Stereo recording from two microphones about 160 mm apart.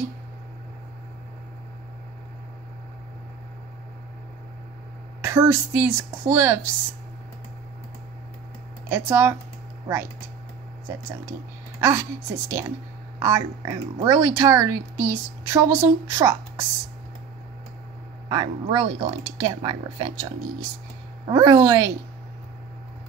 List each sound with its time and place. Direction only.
5.2 s speech: 15° right (ahead or behind)
8.9 s speech: 15° right (ahead or behind)
11.8 s speech: 15° right (ahead or behind)
18.3 s speech: 25° right (ahead or behind)
21.3 s speech: 20° right (ahead or behind)